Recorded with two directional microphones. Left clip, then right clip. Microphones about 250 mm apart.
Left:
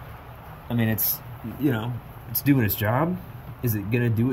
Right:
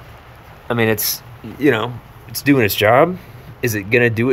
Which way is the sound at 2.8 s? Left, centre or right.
Right.